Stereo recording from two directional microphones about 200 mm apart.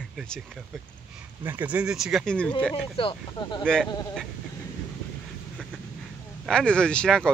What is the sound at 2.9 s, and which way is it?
Speech, 25° left (ahead or behind).